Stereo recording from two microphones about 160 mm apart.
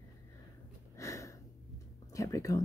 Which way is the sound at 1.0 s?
20° left (ahead or behind).